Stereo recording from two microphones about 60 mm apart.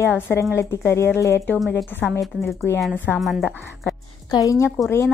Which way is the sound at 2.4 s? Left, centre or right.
Left.